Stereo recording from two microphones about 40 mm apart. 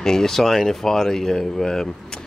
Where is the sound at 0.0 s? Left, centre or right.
Centre.